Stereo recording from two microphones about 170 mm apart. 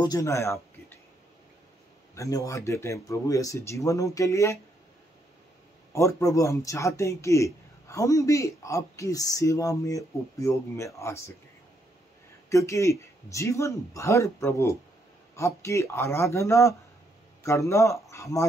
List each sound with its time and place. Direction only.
0.0 s speech: 20° left (ahead or behind)
2.1 s speech: 20° left (ahead or behind)
5.9 s speech: 15° left (ahead or behind)
12.4 s speech: 15° left (ahead or behind)